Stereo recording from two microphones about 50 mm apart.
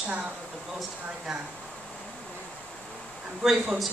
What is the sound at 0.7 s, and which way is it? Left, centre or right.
Speech, centre.